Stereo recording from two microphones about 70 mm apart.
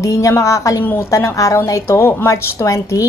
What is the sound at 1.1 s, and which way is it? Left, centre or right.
Speech, left.